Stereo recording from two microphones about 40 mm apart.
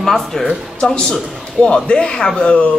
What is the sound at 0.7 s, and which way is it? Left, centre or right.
A man's voice, centre.